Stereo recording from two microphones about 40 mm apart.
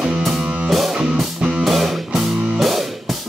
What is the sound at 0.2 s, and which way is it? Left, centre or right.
Music, centre.